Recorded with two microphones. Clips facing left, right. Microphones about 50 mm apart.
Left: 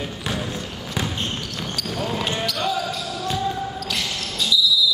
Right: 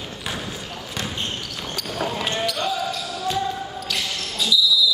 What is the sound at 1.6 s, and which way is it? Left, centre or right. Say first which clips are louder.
Basketball bounce: right 1 dB; centre.